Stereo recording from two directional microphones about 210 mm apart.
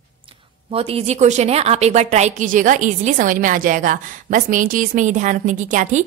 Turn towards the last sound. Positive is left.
turn(degrees=-35)  # may be behind; listen again after turning